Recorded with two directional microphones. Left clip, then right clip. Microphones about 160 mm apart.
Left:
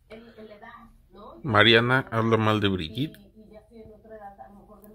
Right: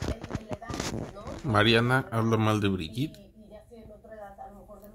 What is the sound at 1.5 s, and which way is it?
Speech, 5° left (ahead or behind).